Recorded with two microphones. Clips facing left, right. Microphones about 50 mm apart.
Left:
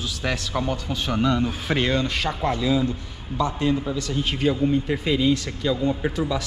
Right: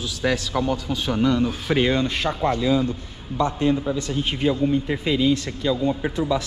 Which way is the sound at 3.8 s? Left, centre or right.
Right.